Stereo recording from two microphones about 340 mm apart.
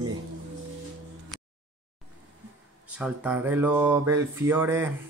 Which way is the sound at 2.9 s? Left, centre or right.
Centre.